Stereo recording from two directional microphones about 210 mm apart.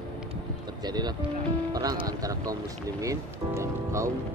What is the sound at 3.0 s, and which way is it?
Speech, 15° right (ahead or behind).